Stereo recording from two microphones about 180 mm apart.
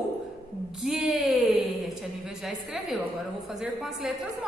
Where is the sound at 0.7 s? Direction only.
Centre (ahead or behind).